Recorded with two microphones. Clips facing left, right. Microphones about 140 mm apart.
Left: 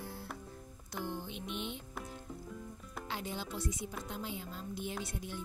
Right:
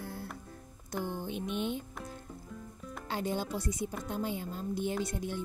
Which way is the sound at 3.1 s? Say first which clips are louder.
Right 7 dB; 45° right (ahead or behind).